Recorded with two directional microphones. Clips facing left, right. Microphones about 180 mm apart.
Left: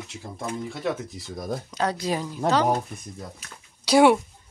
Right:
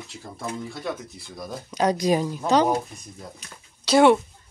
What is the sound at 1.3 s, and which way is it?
Speech, 50° left (ahead or behind).